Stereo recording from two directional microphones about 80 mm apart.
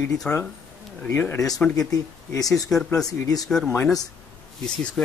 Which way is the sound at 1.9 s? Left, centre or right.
Left.